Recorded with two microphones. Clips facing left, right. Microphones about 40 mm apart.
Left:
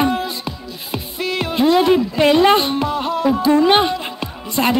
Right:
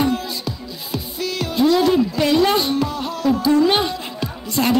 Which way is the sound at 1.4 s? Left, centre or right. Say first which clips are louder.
Left 1 dB; left.